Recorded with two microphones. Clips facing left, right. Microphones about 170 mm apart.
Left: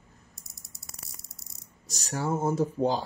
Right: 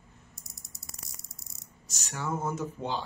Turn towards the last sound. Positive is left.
turn(degrees=35)  # may be behind; listen again after turning